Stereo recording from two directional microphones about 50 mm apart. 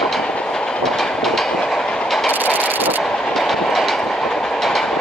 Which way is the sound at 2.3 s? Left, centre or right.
Right.